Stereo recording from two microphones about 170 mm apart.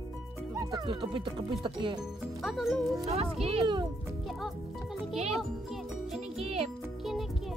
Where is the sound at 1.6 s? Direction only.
30° right (ahead or behind).